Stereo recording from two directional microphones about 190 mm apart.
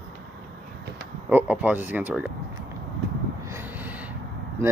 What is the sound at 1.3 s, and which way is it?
Speech, 10° right (ahead or behind).